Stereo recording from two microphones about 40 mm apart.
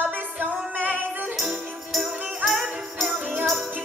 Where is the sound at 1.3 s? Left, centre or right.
Centre.